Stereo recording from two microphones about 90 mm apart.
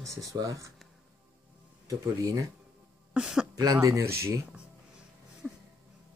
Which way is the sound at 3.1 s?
5° right (ahead or behind).